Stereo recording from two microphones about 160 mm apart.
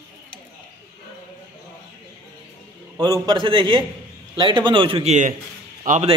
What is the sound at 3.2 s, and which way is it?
A man's voice, 30° right (ahead or behind).